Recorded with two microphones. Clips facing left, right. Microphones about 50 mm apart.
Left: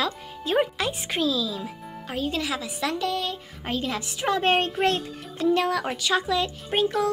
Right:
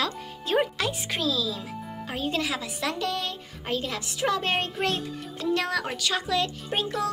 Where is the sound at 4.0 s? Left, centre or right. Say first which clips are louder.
Left 2 dB; left.